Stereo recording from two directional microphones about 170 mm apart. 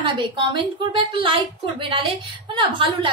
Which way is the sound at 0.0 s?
30° right (ahead or behind).